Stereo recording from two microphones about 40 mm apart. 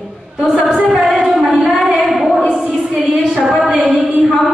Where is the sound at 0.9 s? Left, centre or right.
Centre.